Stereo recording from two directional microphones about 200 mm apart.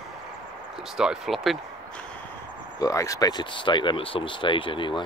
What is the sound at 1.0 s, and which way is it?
Speech, centre (ahead or behind).